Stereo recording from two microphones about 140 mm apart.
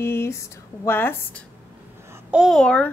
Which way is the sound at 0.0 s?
15° left (ahead or behind).